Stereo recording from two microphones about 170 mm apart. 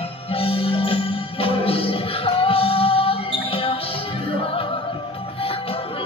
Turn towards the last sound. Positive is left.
turn(degrees=35)  # may be behind; listen again after turning